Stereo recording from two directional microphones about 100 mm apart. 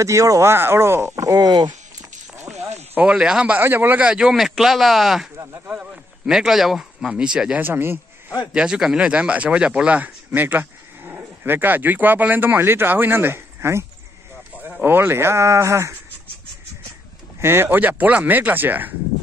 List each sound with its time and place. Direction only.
0.0 s speech: 30° right (ahead or behind)
2.9 s speech: 15° right (ahead or behind)
7.6 s speech: 20° right (ahead or behind)
8.5 s speech: 5° right (ahead or behind); by 16.0 s 30° right (ahead or behind)
17.4 s speech: 25° right (ahead or behind)